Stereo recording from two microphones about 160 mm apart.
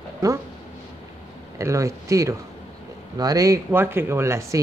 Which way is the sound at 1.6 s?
20° right (ahead or behind).